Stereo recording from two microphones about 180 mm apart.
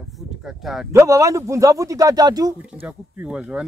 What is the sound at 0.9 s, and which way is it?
Speech, 15° right (ahead or behind).